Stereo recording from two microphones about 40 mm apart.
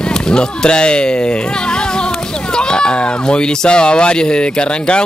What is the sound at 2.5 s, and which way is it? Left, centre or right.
Speech, left.